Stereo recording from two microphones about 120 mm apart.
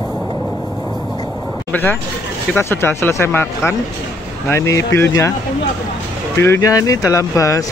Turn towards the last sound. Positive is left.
turn(degrees=25)  # may be behind; listen again after turning